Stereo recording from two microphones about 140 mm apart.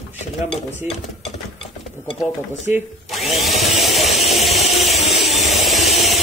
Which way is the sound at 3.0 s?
Centre (ahead or behind).